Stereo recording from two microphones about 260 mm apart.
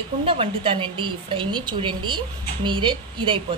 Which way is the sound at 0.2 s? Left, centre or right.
Right.